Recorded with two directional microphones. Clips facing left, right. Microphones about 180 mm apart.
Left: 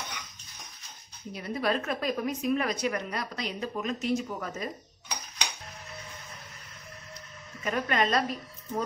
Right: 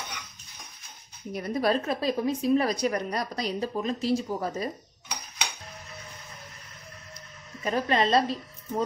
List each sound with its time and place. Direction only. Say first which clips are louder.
1.3 s a woman's voice: right 4 dB; 40° right (ahead or behind)
7.6 s speech: right 3 dB; 30° right (ahead or behind)